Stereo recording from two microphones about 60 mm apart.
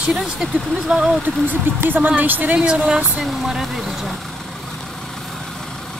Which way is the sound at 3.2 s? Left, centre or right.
Centre.